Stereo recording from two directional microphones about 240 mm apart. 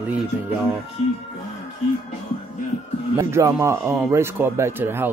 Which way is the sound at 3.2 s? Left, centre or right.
Centre.